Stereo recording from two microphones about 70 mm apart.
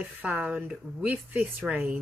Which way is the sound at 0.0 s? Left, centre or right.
Centre.